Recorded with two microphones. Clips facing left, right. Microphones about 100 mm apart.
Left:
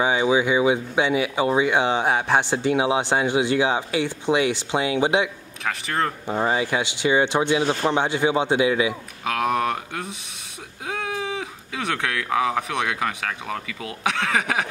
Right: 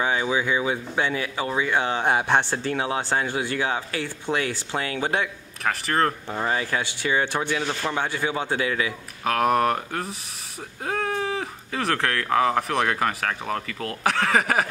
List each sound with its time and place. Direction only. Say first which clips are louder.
0.0 s speech: left 4 dB; 15° left (ahead or behind)
2.0 s speech: even; centre (ahead or behind)
2.5 s speech: left 5 dB; 10° left (ahead or behind)
5.6 s speech: right 2 dB; centre (ahead or behind)
6.2 s speech: left 4 dB; 15° left (ahead or behind)
9.2 s speech: right 2 dB; centre (ahead or behind)